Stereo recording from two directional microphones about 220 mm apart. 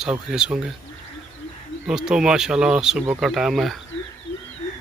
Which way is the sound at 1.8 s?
5° right (ahead or behind).